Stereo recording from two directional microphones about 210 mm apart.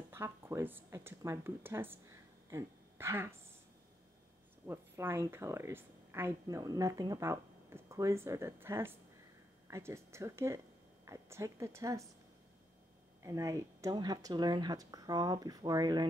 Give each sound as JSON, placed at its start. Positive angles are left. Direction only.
{"t": 0.1, "sound": "speech", "side_deg": -10}
{"t": 4.6, "sound": "speech", "side_deg": -10}
{"t": 13.2, "sound": "speech", "side_deg": -15}